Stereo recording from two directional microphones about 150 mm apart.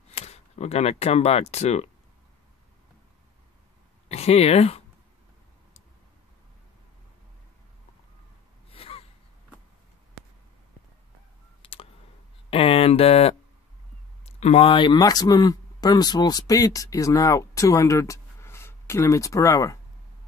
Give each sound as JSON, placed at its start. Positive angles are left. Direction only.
{"t": 0.1, "sound": "speech", "side_deg": 45}
{"t": 4.1, "sound": "speech", "side_deg": 45}
{"t": 8.6, "sound": "gasp", "side_deg": 40}
{"t": 11.6, "sound": "a sound", "side_deg": 40}
{"t": 14.2, "sound": "speech", "side_deg": 45}